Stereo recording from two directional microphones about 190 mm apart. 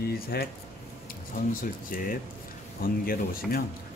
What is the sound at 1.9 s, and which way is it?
Speech, 50° left (ahead or behind).